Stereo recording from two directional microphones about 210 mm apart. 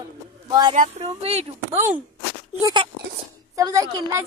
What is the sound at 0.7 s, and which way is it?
A woman's voice, 30° right (ahead or behind).